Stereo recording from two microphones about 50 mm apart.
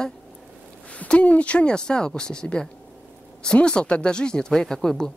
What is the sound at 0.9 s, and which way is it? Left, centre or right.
Speech, left.